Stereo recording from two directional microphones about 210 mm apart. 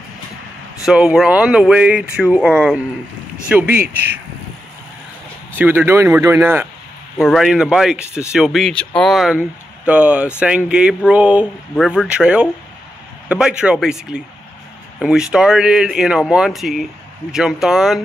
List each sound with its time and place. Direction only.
0.8 s speech: 5° right (ahead or behind)
5.6 s speech: 10° right (ahead or behind)